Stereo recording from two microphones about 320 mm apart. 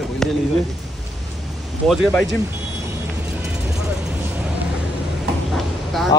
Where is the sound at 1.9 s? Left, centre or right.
Centre.